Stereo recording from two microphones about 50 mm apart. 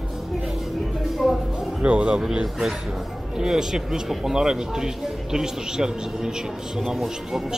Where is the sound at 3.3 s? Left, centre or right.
Centre.